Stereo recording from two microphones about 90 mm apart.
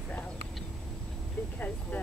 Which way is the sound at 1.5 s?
20° left (ahead or behind).